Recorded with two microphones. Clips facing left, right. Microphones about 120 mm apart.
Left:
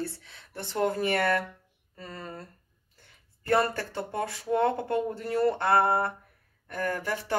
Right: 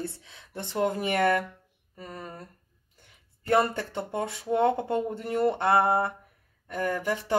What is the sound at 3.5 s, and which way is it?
Speech, 20° right (ahead or behind).